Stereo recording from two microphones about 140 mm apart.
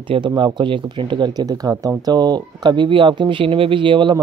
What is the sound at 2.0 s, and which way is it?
Speech, 30° right (ahead or behind).